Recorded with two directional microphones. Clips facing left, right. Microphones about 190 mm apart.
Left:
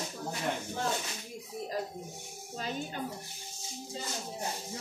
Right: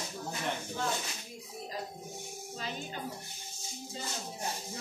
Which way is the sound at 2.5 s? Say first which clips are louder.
Left 4 dB; 45° left (ahead or behind).